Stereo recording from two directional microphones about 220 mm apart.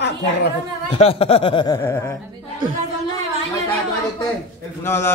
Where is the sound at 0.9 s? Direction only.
25° left (ahead or behind).